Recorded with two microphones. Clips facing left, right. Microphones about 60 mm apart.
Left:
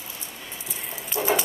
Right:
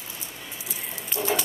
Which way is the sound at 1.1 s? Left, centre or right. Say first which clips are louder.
Left 3 dB; centre.